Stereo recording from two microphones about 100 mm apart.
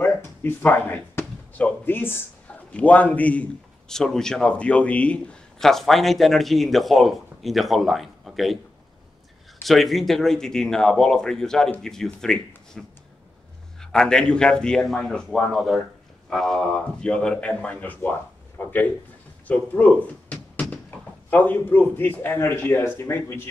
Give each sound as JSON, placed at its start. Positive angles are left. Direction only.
{"t": 0.0, "sound": "a sound", "side_deg": 20}
{"t": 2.7, "sound": "a man's voice", "side_deg": 15}
{"t": 9.6, "sound": "a man's voice", "side_deg": 0}
{"t": 19.4, "sound": "door", "side_deg": 15}
{"t": 21.3, "sound": "a man's voice", "side_deg": 15}